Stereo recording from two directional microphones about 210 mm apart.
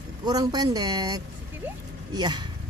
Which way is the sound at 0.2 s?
20° right (ahead or behind).